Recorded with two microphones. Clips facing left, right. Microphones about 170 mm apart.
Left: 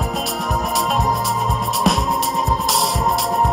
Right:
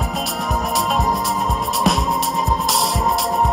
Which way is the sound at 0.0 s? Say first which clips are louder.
Left 1 dB; centre (ahead or behind).